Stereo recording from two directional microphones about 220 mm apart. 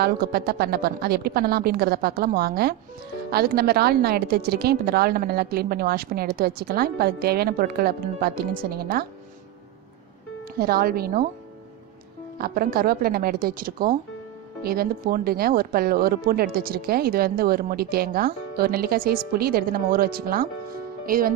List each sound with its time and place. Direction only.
0.0 s speech: 45° right (ahead or behind)
10.6 s speech: 45° right (ahead or behind)
12.4 s speech: 45° right (ahead or behind)